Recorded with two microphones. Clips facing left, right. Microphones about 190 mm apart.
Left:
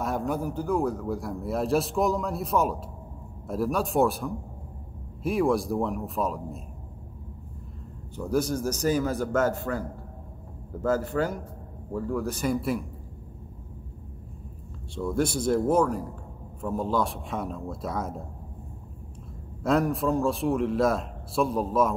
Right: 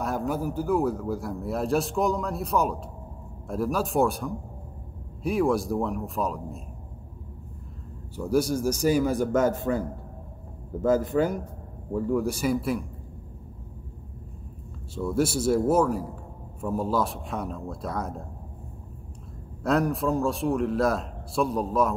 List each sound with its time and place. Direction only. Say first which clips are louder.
0.0 s a man's voice: even; centre (ahead or behind)
8.2 s a man's voice: right 2 dB; 10° right (ahead or behind)
15.0 s a man's voice: right 1 dB; 5° right (ahead or behind)
19.6 s a man's voice: even; centre (ahead or behind)